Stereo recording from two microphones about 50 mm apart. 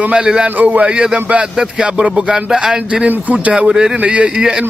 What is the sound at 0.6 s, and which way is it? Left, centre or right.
Speech, right.